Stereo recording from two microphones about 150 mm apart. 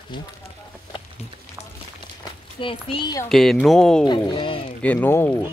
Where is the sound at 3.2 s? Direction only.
Centre (ahead or behind).